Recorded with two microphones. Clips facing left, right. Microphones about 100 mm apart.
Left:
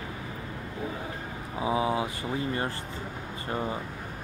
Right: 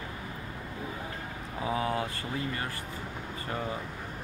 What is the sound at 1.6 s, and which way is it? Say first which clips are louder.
Speech: left 3 dB; 15° left (ahead or behind).